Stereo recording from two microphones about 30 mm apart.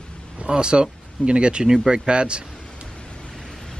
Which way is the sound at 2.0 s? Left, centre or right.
Right.